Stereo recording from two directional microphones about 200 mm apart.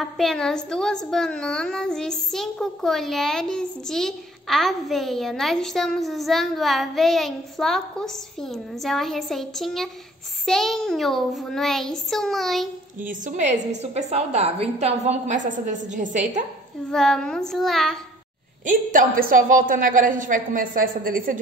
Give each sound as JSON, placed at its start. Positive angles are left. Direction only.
{"t": 0.0, "sound": "child singing", "side_deg": 0}
{"t": 13.1, "sound": "a woman's voice", "side_deg": -35}
{"t": 16.9, "sound": "child singing", "side_deg": 0}
{"t": 18.7, "sound": "a woman's voice", "side_deg": -40}